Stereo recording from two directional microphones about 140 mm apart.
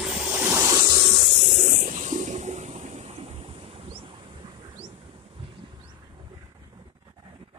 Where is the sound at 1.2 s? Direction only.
45° right (ahead or behind).